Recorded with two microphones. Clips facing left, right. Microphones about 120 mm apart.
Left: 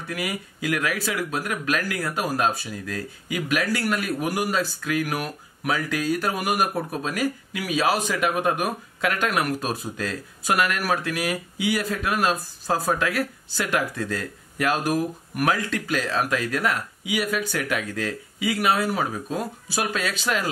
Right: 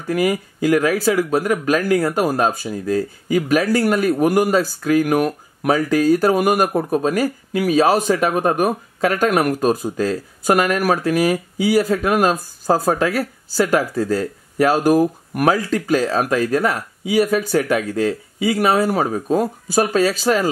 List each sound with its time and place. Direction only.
0.1 s speech: 40° right (ahead or behind)